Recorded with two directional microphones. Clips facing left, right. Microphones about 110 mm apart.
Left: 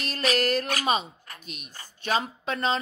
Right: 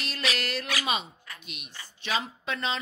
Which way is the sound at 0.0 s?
40° left (ahead or behind).